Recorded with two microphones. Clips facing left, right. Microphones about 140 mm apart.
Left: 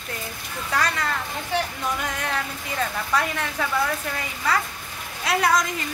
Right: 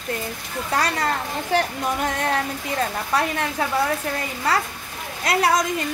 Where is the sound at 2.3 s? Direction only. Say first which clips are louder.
Right 5 dB; 40° right (ahead or behind).